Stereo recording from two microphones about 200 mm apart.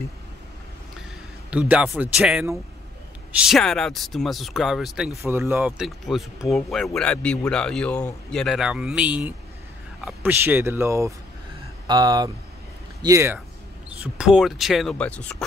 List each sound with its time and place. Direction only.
1.5 s speech: 5° right (ahead or behind)
5.1 s speech: 15° right (ahead or behind); by 15.4 s 5° left (ahead or behind)